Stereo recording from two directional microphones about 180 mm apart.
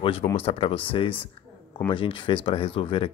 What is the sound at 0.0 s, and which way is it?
Speech, 30° left (ahead or behind).